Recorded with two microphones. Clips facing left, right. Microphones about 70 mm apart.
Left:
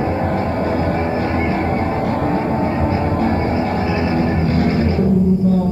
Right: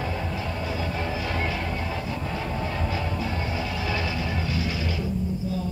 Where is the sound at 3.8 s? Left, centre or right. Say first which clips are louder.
Left 10 dB; left.